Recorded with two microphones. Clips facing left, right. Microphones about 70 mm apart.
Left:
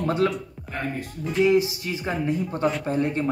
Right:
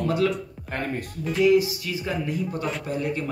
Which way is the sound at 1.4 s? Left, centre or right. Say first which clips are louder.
Right 1 dB; left.